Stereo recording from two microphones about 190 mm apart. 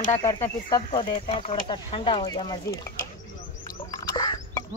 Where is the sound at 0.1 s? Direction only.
15° left (ahead or behind).